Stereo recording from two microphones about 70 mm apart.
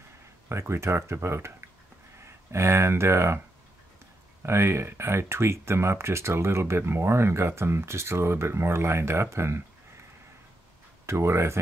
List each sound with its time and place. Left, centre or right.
0.5 s speech: right
4.4 s speech: right
11.1 s speech: right